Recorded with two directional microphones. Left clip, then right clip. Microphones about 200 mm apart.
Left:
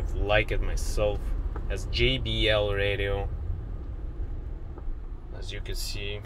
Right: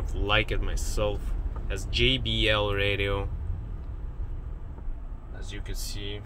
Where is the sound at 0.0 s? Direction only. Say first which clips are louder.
Left 1 dB; 10° right (ahead or behind).